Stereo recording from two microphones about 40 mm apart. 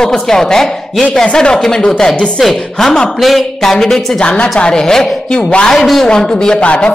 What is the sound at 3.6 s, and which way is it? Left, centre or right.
Speech, centre.